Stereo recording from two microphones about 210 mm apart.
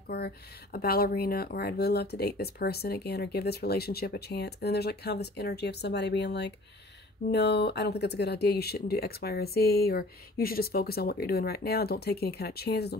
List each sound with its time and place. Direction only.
0.7 s speech: 45° left (ahead or behind)